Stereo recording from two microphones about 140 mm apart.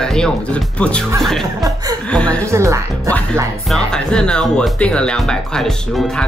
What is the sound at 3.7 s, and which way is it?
Speech, 5° left (ahead or behind).